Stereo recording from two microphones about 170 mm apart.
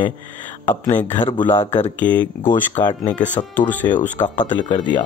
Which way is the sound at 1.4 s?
25° left (ahead or behind).